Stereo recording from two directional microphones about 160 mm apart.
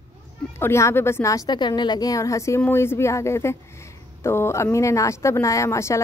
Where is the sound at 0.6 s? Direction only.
15° left (ahead or behind).